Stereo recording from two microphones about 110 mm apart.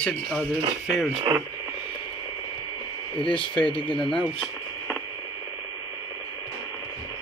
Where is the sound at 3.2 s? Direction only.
50° left (ahead or behind).